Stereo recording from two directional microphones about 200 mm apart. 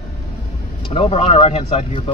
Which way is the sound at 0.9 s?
30° left (ahead or behind).